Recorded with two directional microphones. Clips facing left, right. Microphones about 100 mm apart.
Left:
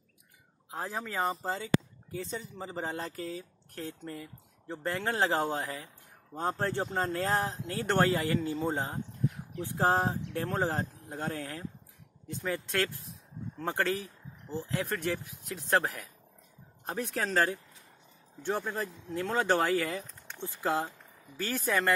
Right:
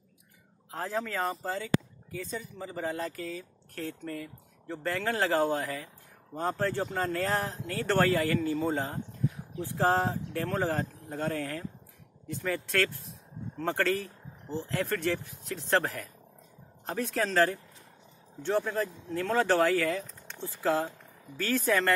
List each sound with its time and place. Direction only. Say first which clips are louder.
0.7 s speech: right 3 dB; 15° left (ahead or behind)